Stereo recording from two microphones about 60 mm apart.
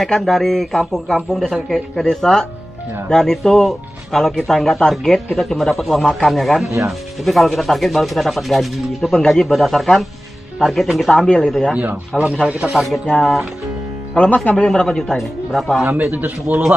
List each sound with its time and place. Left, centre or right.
0.0 s speech: centre
11.1 s speech: centre
11.7 s speech: right
12.7 s speech: centre
14.1 s speech: centre
14.7 s speech: centre
15.8 s a man's voice: right